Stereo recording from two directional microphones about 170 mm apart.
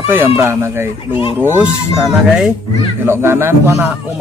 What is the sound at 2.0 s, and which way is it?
Speech, centre (ahead or behind).